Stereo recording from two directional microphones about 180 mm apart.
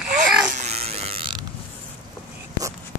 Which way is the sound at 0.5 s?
35° right (ahead or behind).